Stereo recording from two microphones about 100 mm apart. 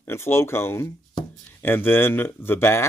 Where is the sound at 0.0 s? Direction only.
25° left (ahead or behind).